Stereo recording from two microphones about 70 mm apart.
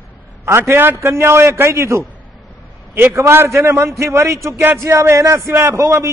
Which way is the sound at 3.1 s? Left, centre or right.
Right.